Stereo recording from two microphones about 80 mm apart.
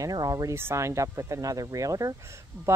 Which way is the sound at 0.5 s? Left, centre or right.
Right.